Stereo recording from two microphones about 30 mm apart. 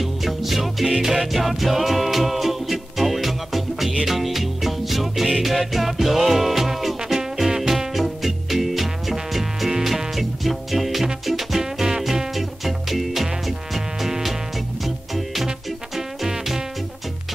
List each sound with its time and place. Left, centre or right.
0.0 s music: centre
7.9 s music: centre